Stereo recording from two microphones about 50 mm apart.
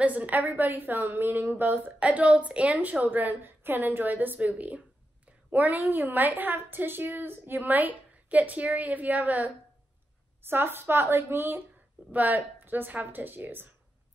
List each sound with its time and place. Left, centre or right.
0.0 s a woman's voice: right
2.0 s a woman's voice: right
10.4 s a woman's voice: right
12.1 s a woman's voice: right